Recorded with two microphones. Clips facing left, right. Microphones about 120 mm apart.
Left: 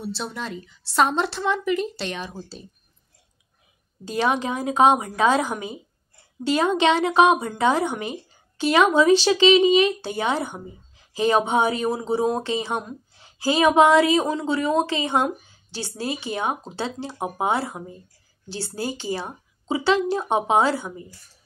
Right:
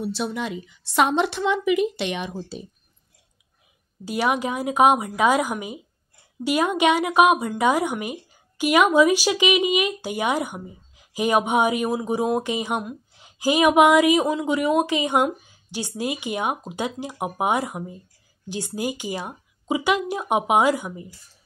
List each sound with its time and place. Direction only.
0.0 s a woman's voice: 10° right (ahead or behind)
4.0 s a woman's voice: 10° right (ahead or behind)